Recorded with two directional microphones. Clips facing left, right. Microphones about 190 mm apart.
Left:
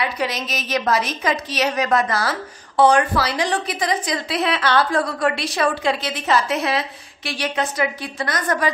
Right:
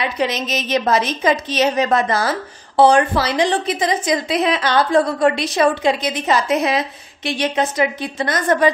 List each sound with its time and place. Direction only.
0.0 s a woman's voice: 20° right (ahead or behind)